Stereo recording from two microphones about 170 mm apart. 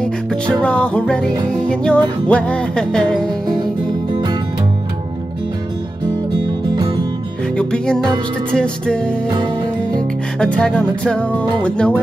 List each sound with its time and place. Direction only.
0.0 s music: 5° left (ahead or behind)
4.1 s music: 25° right (ahead or behind)
7.5 s music: 5° left (ahead or behind)